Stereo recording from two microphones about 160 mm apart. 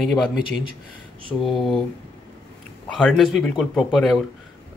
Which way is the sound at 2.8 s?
5° left (ahead or behind).